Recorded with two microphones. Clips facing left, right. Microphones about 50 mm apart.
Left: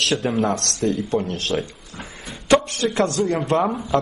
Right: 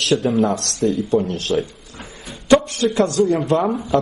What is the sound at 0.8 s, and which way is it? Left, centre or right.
Speech, left.